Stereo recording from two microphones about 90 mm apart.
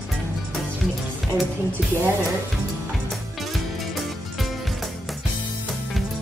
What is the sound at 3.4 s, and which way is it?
Music, centre (ahead or behind).